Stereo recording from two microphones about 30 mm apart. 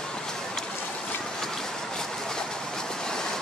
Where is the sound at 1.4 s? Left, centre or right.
Centre.